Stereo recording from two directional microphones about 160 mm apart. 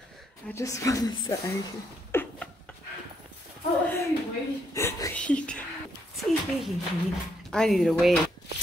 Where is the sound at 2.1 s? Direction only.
15° left (ahead or behind).